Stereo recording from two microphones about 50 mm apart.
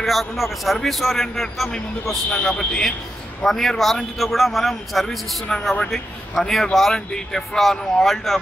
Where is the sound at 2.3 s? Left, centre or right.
Centre.